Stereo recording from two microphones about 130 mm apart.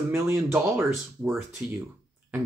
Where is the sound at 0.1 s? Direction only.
20° right (ahead or behind).